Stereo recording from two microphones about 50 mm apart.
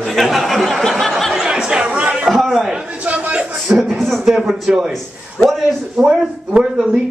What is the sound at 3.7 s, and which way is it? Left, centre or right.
Speech, centre.